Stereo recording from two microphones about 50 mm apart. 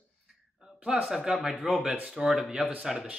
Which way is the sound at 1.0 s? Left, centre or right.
Centre.